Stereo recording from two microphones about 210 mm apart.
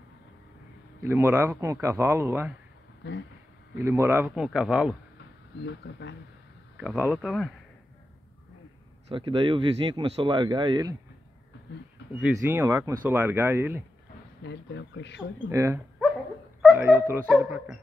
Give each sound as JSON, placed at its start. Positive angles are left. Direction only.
{"t": 1.0, "sound": "speech", "side_deg": -15}
{"t": 3.0, "sound": "speech", "side_deg": 55}
{"t": 3.7, "sound": "speech", "side_deg": -15}
{"t": 5.6, "sound": "speech", "side_deg": 55}
{"t": 6.8, "sound": "speech", "side_deg": -5}
{"t": 9.1, "sound": "speech", "side_deg": -25}
{"t": 12.2, "sound": "speech", "side_deg": -10}
{"t": 14.4, "sound": "speech", "side_deg": 55}
{"t": 15.5, "sound": "speech", "side_deg": -15}